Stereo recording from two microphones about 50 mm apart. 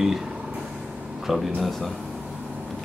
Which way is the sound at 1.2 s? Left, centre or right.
Centre.